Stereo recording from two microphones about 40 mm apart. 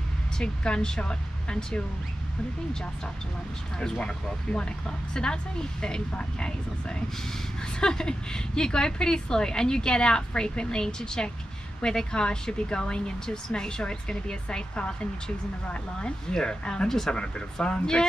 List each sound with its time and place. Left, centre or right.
0.4 s speech: left
3.8 s speech: centre